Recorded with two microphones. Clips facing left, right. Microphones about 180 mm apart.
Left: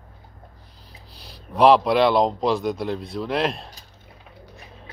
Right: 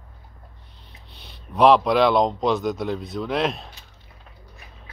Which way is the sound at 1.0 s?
Centre (ahead or behind).